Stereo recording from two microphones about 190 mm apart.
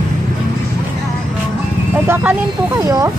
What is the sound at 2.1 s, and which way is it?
Speech, 15° right (ahead or behind).